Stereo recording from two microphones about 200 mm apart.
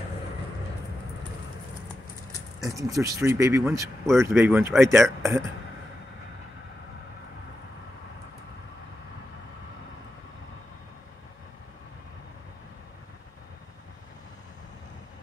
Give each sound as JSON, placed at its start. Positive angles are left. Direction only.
{"t": 2.6, "sound": "speech", "side_deg": -15}